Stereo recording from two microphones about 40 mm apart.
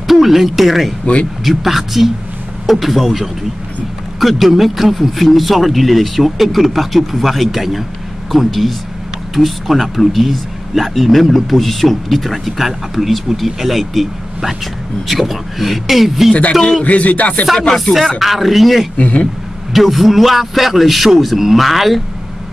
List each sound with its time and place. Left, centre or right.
0.0 s speech: centre
16.8 s music: left
18.2 s speech: centre
18.9 s music: left
19.7 s speech: centre